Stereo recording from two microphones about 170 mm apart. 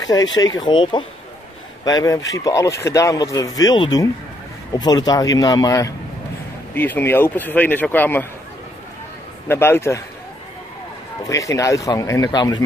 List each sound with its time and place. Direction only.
0.0 s speech: 20° left (ahead or behind)
9.5 s speech: 15° left (ahead or behind)
11.2 s speech: 20° left (ahead or behind)